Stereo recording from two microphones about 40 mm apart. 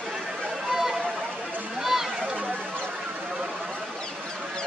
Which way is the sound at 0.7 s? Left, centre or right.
Centre.